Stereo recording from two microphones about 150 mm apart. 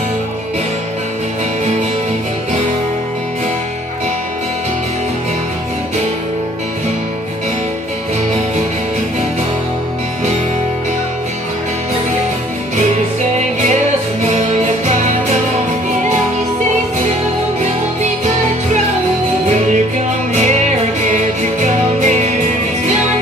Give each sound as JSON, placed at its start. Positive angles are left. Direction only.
{"t": 14.2, "sound": "music", "side_deg": -50}
{"t": 21.1, "sound": "music", "side_deg": -50}